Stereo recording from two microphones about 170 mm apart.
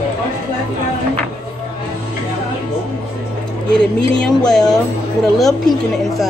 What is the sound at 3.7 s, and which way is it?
A woman's voice, 5° left (ahead or behind).